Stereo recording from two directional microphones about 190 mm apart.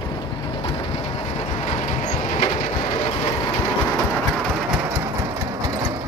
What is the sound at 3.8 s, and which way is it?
Engine, 5° left (ahead or behind).